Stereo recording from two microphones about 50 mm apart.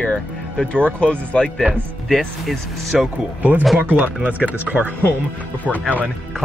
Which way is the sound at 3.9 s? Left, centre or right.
Right.